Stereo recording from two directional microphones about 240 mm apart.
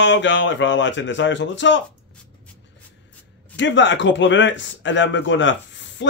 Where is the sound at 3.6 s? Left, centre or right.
Left.